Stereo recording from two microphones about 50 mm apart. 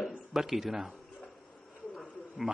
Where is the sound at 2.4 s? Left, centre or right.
Centre.